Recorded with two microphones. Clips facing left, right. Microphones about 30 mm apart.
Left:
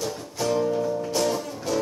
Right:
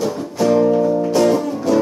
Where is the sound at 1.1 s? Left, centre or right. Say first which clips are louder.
Right 10 dB; right.